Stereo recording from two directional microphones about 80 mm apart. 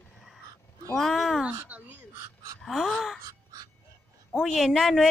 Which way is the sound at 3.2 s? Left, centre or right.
Right.